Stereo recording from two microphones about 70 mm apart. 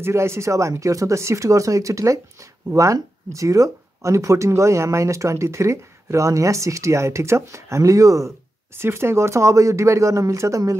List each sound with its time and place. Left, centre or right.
0.0 s speech: right
8.7 s speech: right